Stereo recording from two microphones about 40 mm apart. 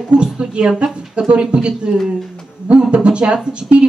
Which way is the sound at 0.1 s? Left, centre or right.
Right.